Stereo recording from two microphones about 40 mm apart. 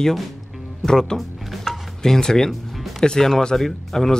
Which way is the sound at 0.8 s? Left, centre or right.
Centre.